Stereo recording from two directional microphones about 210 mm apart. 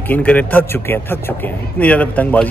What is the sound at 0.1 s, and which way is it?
A man's voice, 5° left (ahead or behind).